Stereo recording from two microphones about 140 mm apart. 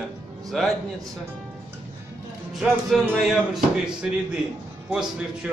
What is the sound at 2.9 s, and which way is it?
Speech, centre (ahead or behind).